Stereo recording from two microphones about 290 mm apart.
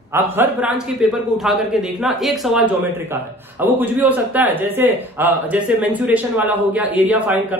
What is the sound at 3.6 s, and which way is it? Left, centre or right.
A man's voice, centre.